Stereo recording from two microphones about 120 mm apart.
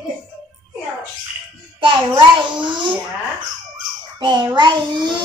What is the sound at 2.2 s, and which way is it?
Speech, 40° right (ahead or behind).